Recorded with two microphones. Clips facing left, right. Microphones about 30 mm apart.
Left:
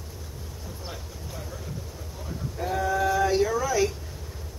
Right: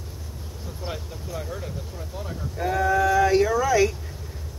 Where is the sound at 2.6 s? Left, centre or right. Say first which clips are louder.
Right 4 dB; right.